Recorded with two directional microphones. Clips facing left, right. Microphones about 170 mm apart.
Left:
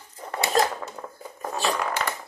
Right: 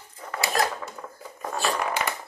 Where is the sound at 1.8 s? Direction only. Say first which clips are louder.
Even; 10° right (ahead or behind).